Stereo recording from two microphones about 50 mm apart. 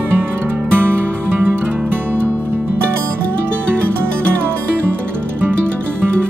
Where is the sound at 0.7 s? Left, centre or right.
Right.